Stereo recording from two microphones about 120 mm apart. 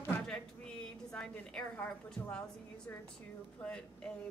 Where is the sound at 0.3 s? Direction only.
5° left (ahead or behind).